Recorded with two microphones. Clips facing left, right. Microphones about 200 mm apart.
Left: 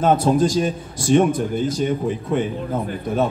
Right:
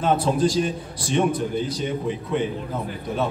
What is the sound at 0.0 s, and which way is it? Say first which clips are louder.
A man's voice: left 4 dB; 45° left (ahead or behind).